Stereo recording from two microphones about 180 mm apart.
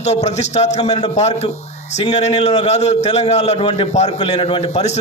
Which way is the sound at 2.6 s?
40° left (ahead or behind).